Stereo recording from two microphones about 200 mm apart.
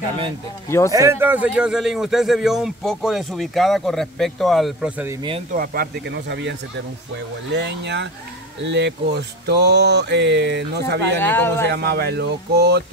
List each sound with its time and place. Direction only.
0.7 s speech: 15° left (ahead or behind)
0.9 s a man's voice: 15° right (ahead or behind)
5.5 s speech: 50° right (ahead or behind)
7.5 s speech: 60° right (ahead or behind)
11.0 s speech: 10° left (ahead or behind)
11.7 s speech: 55° right (ahead or behind)